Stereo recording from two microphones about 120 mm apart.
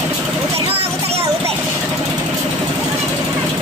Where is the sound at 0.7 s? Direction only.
55° right (ahead or behind).